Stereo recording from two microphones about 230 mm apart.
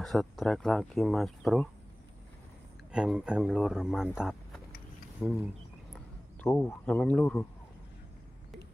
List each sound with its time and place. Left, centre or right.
0.0 s speech: centre
2.9 s speech: centre
5.2 s speech: centre